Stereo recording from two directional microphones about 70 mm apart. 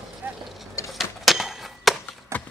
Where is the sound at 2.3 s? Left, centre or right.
Right.